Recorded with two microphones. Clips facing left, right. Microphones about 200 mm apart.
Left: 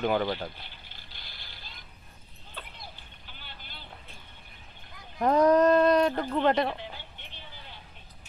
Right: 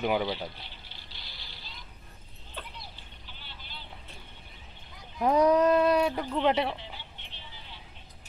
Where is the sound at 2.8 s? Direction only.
50° left (ahead or behind).